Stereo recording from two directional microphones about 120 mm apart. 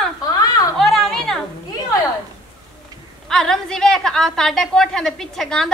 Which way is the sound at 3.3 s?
5° left (ahead or behind).